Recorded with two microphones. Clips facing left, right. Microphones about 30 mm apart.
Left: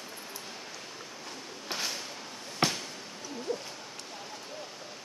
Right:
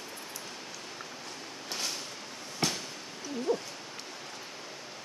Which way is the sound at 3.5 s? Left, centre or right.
Centre.